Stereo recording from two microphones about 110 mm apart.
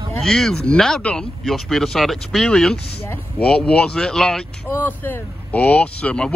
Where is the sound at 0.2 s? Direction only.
5° left (ahead or behind).